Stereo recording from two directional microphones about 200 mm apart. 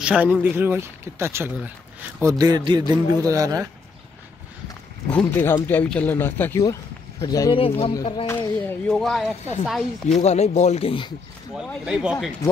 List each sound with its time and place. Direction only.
0.0 s speech: 5° right (ahead or behind)
2.3 s speech: 20° right (ahead or behind)
5.1 s speech: 10° left (ahead or behind)
8.5 s speech: 5° left (ahead or behind)
10.2 s speech: 35° left (ahead or behind)
11.5 s speech: 5° right (ahead or behind)